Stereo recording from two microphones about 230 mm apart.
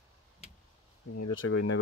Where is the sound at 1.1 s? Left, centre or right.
Left.